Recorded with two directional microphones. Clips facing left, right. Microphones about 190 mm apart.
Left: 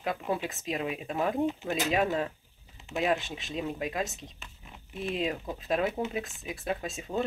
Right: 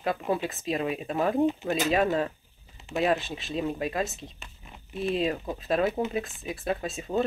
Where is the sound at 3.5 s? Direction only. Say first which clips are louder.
Right 4 dB; 30° right (ahead or behind).